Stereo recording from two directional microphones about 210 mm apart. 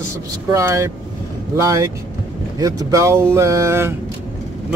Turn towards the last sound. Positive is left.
turn(degrees=-15)  # may be behind; listen again after turning